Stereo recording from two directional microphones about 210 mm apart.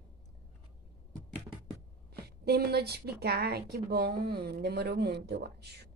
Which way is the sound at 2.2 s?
50° right (ahead or behind).